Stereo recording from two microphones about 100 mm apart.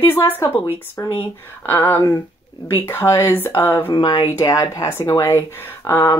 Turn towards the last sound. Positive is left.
turn(degrees=25)  # may be behind; listen again after turning